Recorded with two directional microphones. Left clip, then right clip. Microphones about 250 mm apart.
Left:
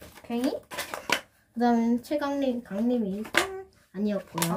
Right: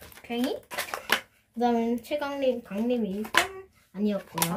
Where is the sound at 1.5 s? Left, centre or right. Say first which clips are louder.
Left 1 dB; centre.